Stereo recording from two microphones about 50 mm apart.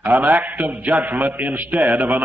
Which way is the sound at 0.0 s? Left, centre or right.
Right.